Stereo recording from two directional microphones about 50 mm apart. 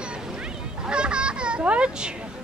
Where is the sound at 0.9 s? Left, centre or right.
Centre.